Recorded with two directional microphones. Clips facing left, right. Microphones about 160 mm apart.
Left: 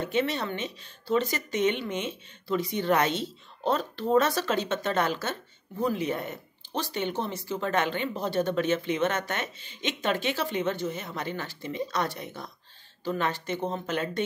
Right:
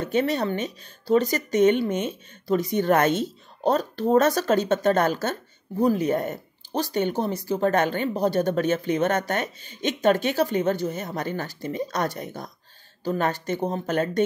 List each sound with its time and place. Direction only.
0.0 s speech: 40° right (ahead or behind)